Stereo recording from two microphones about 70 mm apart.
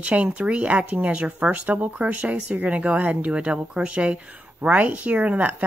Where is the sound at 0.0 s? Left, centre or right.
Centre.